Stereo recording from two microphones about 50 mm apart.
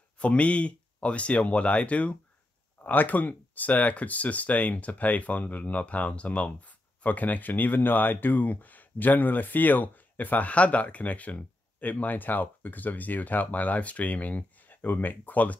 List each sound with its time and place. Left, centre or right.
0.2 s speech: left
2.8 s speech: left